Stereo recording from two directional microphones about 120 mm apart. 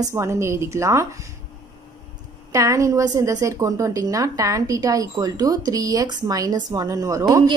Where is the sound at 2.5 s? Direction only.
25° right (ahead or behind).